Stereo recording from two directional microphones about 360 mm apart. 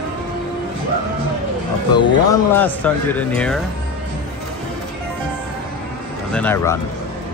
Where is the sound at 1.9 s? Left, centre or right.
Centre.